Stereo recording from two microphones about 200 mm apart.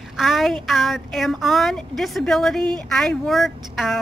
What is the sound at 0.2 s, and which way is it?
A woman's voice, centre (ahead or behind).